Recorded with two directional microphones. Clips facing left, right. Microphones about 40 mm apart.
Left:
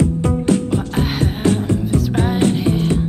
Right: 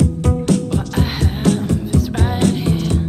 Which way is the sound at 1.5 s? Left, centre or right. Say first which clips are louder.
Right 1 dB; right.